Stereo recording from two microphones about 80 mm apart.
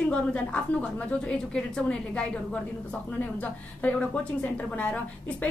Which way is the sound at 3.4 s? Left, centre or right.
Centre.